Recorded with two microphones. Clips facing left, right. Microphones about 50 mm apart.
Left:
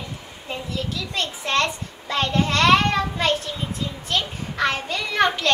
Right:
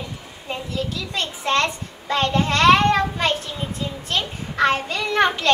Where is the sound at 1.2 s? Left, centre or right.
Centre.